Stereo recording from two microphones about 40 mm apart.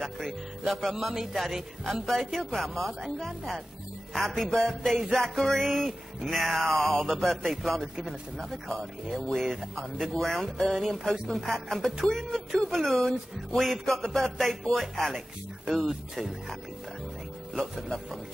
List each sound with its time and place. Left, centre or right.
0.2 s speech: centre
4.5 s music: centre
5.1 s speech: centre
8.0 s speech: centre
9.9 s speech: centre
17.6 s speech: centre